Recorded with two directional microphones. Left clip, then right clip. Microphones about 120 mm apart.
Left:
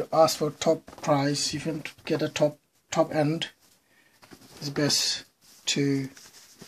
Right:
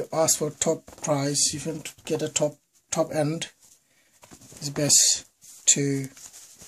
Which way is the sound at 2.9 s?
30° right (ahead or behind).